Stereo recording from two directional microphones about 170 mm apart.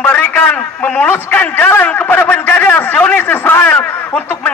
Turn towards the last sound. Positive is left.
turn(degrees=10)  # may be behind; listen again after turning